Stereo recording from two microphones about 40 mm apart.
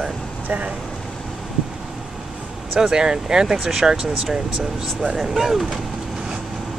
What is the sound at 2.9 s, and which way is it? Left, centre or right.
Speech, centre.